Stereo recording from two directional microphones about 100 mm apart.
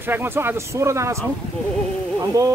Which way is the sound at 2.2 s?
35° right (ahead or behind).